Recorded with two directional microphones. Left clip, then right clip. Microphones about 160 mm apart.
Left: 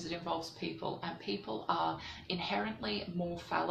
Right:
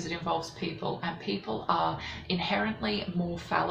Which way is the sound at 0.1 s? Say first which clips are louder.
Right 6 dB; 15° left (ahead or behind).